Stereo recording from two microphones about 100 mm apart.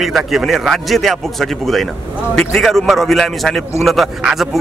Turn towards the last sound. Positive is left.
turn(degrees=0)  # may be behind; listen again after turning